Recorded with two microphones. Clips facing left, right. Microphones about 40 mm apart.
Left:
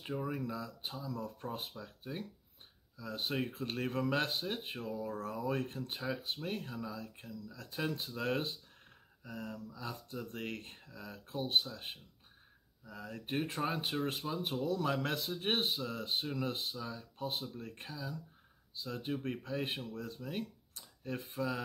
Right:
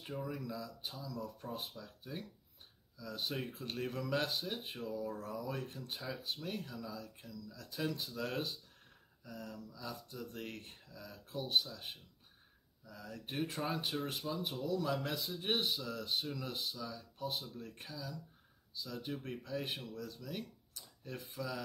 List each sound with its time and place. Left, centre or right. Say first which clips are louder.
0.0 s speech: left 4 dB; left